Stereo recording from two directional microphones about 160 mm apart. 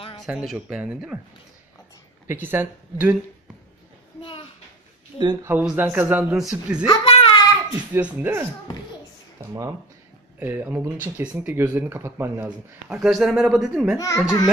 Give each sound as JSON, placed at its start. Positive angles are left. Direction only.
{"t": 0.2, "sound": "speech", "side_deg": 0}
{"t": 2.2, "sound": "speech", "side_deg": -15}
{"t": 4.2, "sound": "a child's voice", "side_deg": 35}
{"t": 5.2, "sound": "speech", "side_deg": -25}
{"t": 5.5, "sound": "speech", "side_deg": -10}
{"t": 6.9, "sound": "a sound", "side_deg": 35}
{"t": 7.9, "sound": "speech", "side_deg": -10}
{"t": 13.9, "sound": "a child's voice", "side_deg": 20}